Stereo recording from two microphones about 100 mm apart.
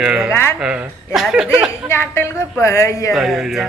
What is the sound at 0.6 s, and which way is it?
Speech, 10° right (ahead or behind).